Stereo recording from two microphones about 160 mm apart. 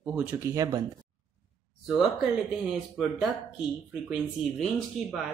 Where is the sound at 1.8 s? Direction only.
Centre (ahead or behind).